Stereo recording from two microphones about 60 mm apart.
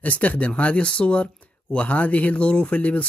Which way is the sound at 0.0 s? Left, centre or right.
Left.